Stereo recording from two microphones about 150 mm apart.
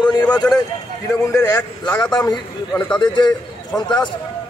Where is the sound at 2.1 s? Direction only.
30° left (ahead or behind).